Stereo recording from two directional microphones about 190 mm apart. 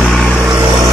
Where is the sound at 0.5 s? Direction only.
15° right (ahead or behind).